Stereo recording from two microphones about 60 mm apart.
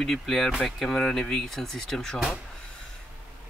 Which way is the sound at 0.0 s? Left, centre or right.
Centre.